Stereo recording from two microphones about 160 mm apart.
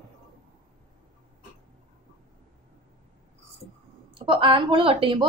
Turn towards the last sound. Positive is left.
turn(degrees=-35)  # may be behind; listen again after turning